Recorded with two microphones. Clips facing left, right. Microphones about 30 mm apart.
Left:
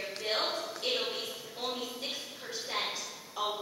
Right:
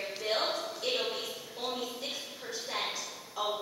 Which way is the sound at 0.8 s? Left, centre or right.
Left.